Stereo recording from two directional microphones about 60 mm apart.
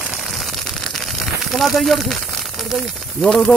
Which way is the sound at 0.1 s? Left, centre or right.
Centre.